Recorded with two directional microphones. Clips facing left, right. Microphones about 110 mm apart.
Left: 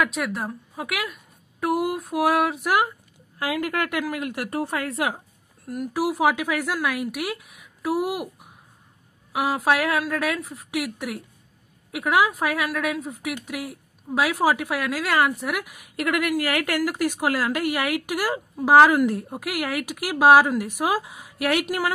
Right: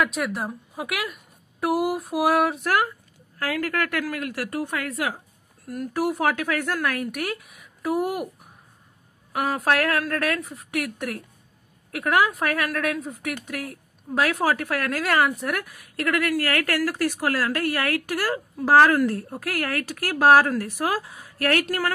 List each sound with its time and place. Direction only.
0.0 s speech: centre (ahead or behind)
2.6 s a woman's voice: 15° left (ahead or behind)
5.7 s speech: 10° left (ahead or behind)
9.3 s a woman's voice: 5° left (ahead or behind)
15.6 s a woman's voice: 15° left (ahead or behind)